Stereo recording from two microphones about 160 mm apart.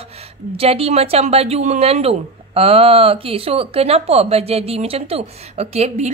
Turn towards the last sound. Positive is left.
turn(degrees=-40)  # may be behind; listen again after turning